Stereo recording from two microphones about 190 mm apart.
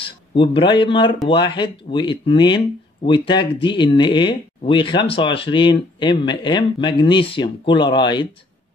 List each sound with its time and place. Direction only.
0.0 s speech: 25° left (ahead or behind)